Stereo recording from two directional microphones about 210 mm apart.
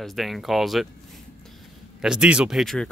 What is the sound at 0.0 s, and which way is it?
Speech, centre (ahead or behind).